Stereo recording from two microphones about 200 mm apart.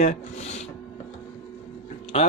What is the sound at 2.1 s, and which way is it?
Speech, 30° left (ahead or behind).